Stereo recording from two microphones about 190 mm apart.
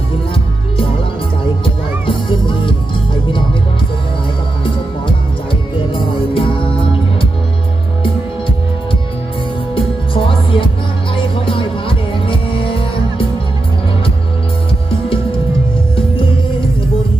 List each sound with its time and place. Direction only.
2.0 s music: 25° left (ahead or behind)
5.9 s music: 30° left (ahead or behind)
9.8 s music: 25° left (ahead or behind)